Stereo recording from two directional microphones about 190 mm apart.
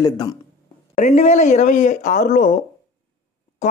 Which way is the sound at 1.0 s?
40° left (ahead or behind).